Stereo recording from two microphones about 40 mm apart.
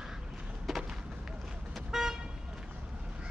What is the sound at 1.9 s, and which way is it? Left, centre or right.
Toot, centre.